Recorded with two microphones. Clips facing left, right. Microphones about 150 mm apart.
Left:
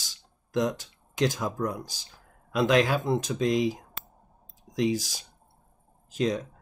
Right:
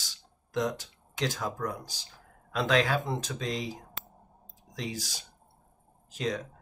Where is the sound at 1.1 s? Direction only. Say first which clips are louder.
Left 5 dB; 15° left (ahead or behind).